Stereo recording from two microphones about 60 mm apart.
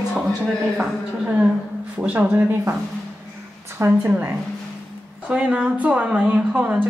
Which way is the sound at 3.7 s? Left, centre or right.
Right.